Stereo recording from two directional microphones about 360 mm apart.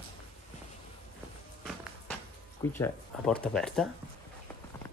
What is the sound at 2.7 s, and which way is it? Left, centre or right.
Speech, centre.